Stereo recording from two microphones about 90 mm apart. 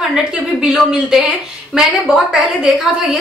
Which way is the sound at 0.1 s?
5° right (ahead or behind).